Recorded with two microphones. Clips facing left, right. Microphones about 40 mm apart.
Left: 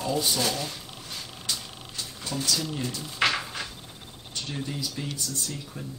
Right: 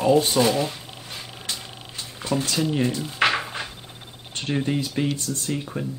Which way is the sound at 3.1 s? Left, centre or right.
Centre.